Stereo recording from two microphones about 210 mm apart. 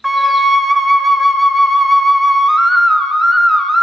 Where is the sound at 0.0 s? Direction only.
Centre (ahead or behind).